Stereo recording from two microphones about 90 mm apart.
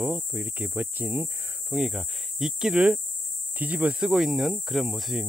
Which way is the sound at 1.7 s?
5° right (ahead or behind).